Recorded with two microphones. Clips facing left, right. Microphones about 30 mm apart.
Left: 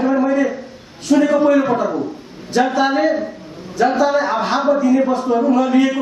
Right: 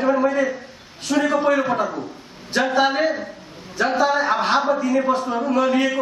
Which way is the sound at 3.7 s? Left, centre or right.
Centre.